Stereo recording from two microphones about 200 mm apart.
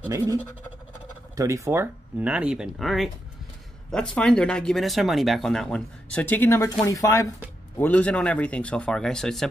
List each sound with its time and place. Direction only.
0.1 s speech: 15° right (ahead or behind); by 9.5 s centre (ahead or behind)